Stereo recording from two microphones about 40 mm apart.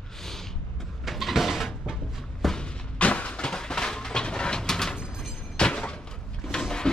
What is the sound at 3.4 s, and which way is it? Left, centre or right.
Vehicle, centre.